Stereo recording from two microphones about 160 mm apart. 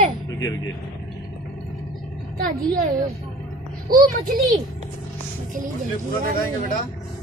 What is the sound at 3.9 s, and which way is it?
Speech, 65° right (ahead or behind).